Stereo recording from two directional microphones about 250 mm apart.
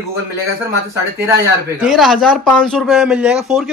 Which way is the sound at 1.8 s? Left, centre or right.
Centre.